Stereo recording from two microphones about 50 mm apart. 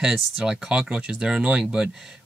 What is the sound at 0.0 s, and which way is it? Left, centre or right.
Speech, centre.